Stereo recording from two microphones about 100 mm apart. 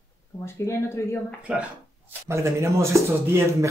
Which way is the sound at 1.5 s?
10° right (ahead or behind).